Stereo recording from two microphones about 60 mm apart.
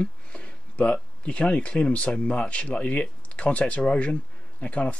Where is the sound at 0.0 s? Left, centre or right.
Left.